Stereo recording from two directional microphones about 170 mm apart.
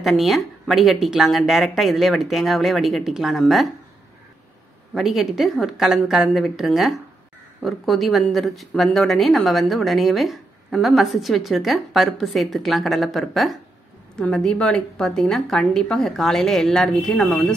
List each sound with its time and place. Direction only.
0.0 s speech: centre (ahead or behind)
4.9 s speech: centre (ahead or behind)